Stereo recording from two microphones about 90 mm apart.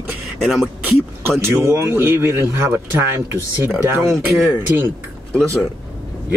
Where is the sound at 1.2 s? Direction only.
25° right (ahead or behind).